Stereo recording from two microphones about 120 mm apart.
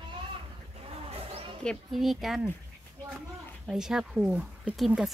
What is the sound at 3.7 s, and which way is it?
Speech, 5° right (ahead or behind).